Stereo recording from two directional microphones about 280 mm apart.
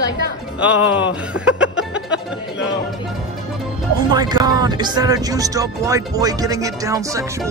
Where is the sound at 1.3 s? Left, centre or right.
Centre.